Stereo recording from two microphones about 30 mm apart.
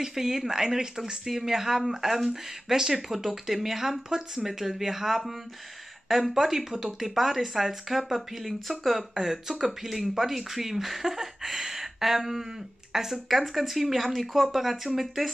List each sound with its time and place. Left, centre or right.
0.0 s speech: centre
4.5 s speech: centre
6.3 s speech: centre
13.3 s speech: centre